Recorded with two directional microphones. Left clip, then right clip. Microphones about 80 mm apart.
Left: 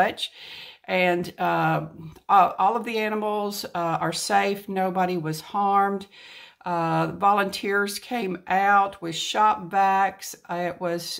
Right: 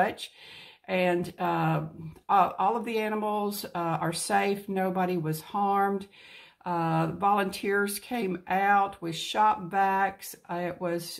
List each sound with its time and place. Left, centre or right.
0.0 s speech: left